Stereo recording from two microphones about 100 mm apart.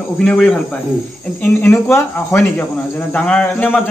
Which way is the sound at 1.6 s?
25° left (ahead or behind).